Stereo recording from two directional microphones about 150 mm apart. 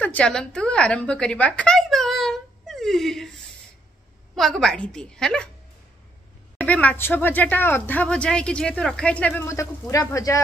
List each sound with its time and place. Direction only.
0.0 s a sound: 10° left (ahead or behind)
4.4 s a woman's voice: centre (ahead or behind)
6.6 s speech: 10° left (ahead or behind)